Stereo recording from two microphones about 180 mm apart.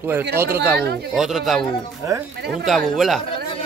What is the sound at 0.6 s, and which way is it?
Speech, 65° right (ahead or behind).